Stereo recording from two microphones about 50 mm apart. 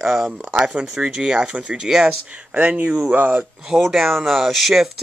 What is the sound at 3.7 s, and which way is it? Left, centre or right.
Speech, centre.